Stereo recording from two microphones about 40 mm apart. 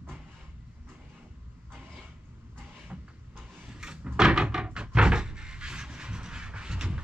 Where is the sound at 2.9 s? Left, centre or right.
Right.